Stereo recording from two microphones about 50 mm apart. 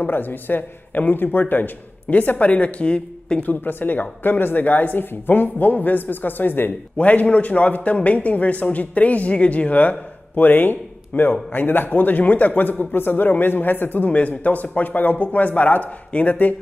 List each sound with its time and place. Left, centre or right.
0.0 s a woman's voice: left
3.4 s a woman's voice: left